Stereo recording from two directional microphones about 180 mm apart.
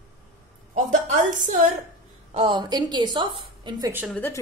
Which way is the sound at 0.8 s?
45° right (ahead or behind).